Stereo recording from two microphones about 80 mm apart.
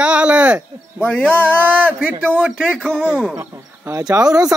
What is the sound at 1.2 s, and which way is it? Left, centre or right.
Speech, centre.